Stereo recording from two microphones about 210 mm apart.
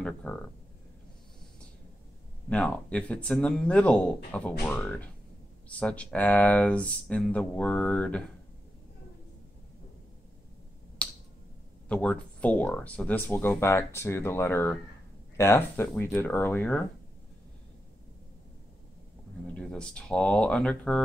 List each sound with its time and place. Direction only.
0.0 s a sound: 5° left (ahead or behind)
2.5 s speech: 5° left (ahead or behind)
11.0 s finger snapping: 5° left (ahead or behind)
11.9 s speech: 5° left (ahead or behind)
19.5 s speech: 5° left (ahead or behind)